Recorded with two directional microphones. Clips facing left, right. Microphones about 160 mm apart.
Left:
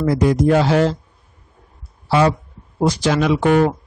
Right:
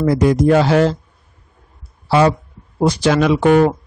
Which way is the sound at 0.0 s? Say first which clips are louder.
Right 2 dB; 65° right (ahead or behind).